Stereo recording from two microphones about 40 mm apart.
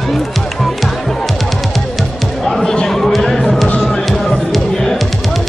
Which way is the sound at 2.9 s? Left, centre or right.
Centre.